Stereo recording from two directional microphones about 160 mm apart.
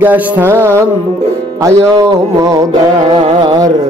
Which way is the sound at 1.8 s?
20° right (ahead or behind).